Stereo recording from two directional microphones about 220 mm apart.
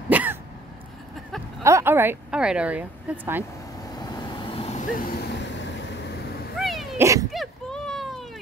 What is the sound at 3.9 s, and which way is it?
Vehicle, 20° left (ahead or behind).